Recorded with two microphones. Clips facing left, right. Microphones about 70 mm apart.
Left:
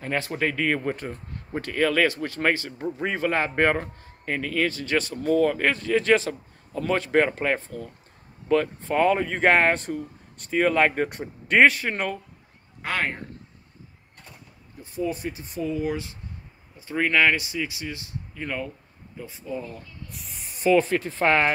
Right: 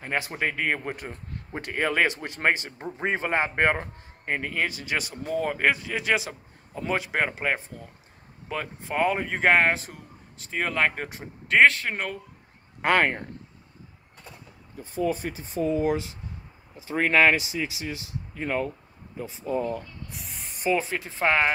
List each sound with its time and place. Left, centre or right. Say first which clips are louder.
0.0 s speech: left 2 dB; centre
1.5 s speech: left 4 dB; right; by 12.2 s centre
12.8 s speech: right 6 dB; right
15.3 s speech: right 3 dB; right
19.4 s speech: right 6 dB; right
20.6 s speech: left 6 dB; centre